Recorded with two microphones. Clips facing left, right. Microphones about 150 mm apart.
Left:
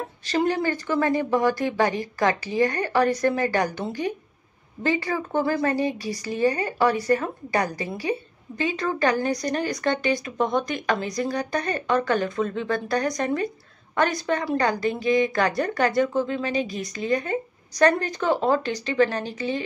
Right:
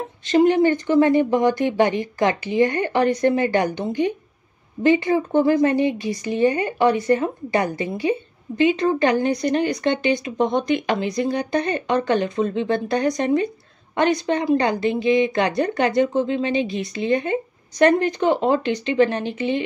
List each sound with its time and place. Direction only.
0.2 s speech: 20° right (ahead or behind)
14.9 s speech: 45° left (ahead or behind)
15.3 s speech: 20° right (ahead or behind)
19.2 s a woman's voice: 40° left (ahead or behind)